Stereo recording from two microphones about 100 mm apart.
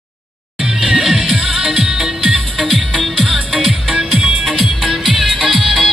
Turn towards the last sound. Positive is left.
turn(degrees=-5)  # may be behind; listen again after turning